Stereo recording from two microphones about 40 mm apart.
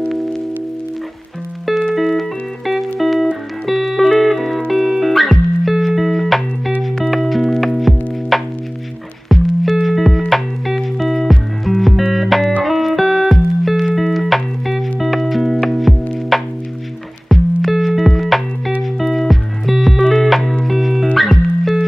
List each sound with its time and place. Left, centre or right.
0.1 s music: centre
2.0 s music: centre
17.6 s music: centre